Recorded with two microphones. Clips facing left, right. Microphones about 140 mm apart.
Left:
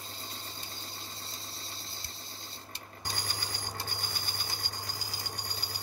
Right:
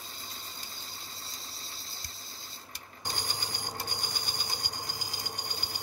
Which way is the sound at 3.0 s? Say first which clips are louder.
Right 2 dB; 20° right (ahead or behind).